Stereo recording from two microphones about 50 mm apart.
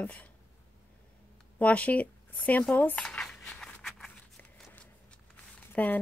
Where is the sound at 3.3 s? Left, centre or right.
Centre.